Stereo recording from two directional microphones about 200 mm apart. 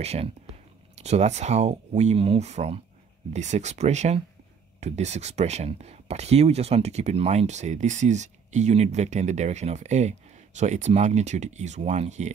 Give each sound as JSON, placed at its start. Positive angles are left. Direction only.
{"t": 0.0, "sound": "speech", "side_deg": -30}